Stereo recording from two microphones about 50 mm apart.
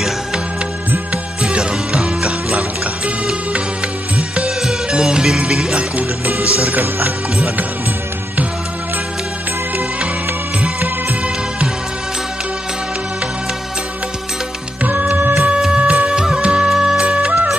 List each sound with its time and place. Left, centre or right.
1.1 s music: right
4.4 s music: centre
6.4 s music: right
14.8 s music: right
15.3 s music: centre